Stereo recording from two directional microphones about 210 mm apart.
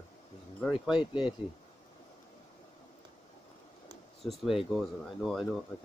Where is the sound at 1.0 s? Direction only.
5° right (ahead or behind).